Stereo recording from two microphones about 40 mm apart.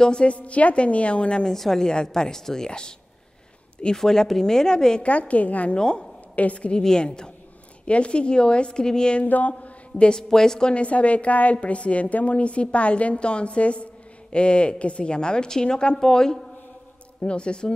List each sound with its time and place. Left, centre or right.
0.0 s a woman's voice: left
0.3 s a woman's voice: left
1.4 s a woman's voice: centre
3.9 s a woman's voice: centre
5.0 s a woman's voice: left
5.8 s a woman's voice: left
6.3 s a woman's voice: left
6.8 s a woman's voice: centre
7.8 s a woman's voice: left
9.2 s a sound: left
9.5 s a sound: left
10.1 s a woman's voice: centre
10.7 s a woman's voice: left; by 16.3 s centre
17.2 s a woman's voice: left